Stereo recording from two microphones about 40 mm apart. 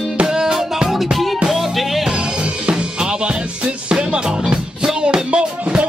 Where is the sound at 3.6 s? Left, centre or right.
Right.